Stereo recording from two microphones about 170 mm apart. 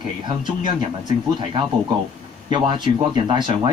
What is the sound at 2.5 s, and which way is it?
Speech, 30° right (ahead or behind).